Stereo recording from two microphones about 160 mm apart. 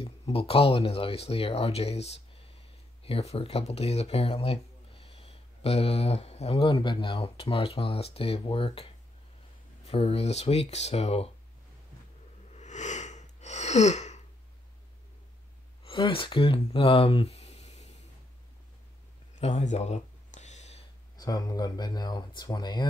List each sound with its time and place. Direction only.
0.0 s speech: 35° left (ahead or behind)
9.8 s speech: 40° left (ahead or behind)
12.5 s a sound: 45° left (ahead or behind)
15.8 s speech: 35° left (ahead or behind)
19.3 s a sound: 45° left (ahead or behind)
21.2 s speech: 25° left (ahead or behind)